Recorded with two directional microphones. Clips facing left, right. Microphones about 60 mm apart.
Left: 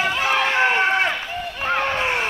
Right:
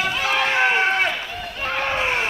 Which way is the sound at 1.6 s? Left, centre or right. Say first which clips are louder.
Left 1 dB; centre.